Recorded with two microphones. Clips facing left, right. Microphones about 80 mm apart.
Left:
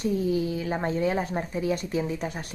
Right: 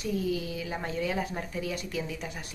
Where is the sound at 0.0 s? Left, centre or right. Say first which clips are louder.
Left 5 dB; left.